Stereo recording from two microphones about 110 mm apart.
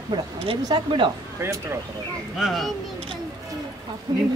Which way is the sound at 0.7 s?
50° right (ahead or behind).